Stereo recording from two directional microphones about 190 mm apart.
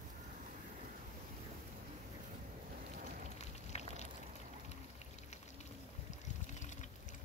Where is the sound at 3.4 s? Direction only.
35° left (ahead or behind).